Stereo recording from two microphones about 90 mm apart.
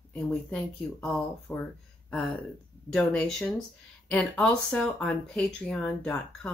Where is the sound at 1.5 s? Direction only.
20° left (ahead or behind).